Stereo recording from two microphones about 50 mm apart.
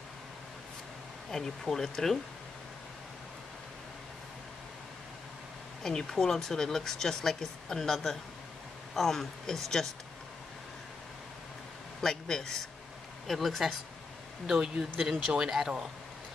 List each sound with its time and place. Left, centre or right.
1.3 s speech: centre
5.8 s speech: centre
12.0 s speech: centre
15.2 s speech: centre